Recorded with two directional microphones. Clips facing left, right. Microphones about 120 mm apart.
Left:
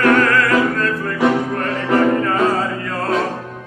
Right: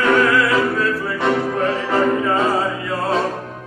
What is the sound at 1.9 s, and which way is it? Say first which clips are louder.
Music: left 4 dB; centre (ahead or behind).